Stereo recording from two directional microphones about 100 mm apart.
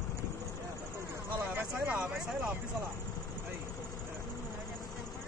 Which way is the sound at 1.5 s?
20° right (ahead or behind).